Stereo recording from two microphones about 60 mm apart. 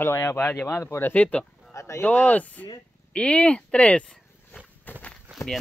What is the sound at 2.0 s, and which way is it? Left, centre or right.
Speech, left.